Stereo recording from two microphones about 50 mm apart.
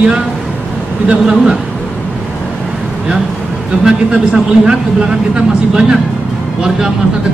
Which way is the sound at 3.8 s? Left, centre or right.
Centre.